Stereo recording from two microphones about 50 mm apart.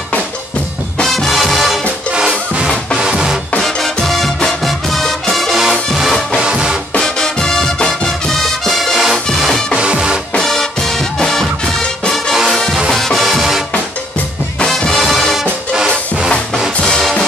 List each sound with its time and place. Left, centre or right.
1.0 s music: centre
3.0 s music: centre
3.5 s music: centre
6.4 s music: centre
7.0 s music: centre
8.9 s music: centre
9.8 s music: centre
10.3 s music: centre
12.9 s music: centre
14.7 s music: centre
16.8 s music: centre